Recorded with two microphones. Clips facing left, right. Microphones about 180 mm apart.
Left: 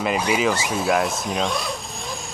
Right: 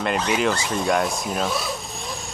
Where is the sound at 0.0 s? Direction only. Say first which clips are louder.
Left 1 dB; 5° left (ahead or behind).